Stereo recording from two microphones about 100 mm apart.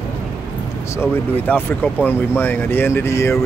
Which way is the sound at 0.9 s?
20° left (ahead or behind).